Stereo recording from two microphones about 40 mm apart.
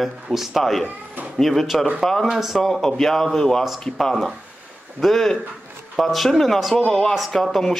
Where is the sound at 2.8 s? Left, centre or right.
Centre.